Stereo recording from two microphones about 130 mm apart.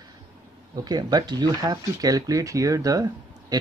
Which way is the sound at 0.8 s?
30° right (ahead or behind).